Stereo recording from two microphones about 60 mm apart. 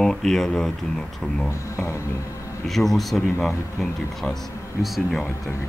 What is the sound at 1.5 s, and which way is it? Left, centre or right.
Speech, left.